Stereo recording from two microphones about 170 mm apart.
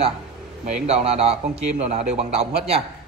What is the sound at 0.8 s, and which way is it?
A man's voice, 40° right (ahead or behind).